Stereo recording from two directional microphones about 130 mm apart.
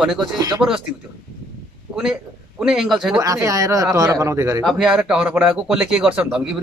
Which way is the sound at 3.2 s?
25° right (ahead or behind).